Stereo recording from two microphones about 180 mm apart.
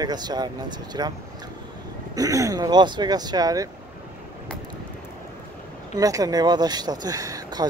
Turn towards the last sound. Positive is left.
turn(degrees=-20)  # may be behind; listen again after turning